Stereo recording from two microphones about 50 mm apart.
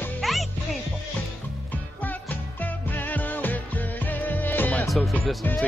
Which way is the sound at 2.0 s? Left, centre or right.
Left.